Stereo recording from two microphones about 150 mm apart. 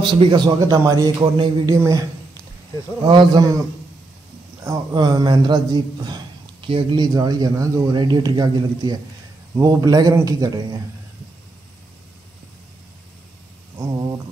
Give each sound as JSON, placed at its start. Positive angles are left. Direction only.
{"t": 0.0, "sound": "a man's voice", "side_deg": -30}
{"t": 4.6, "sound": "a man's voice", "side_deg": -25}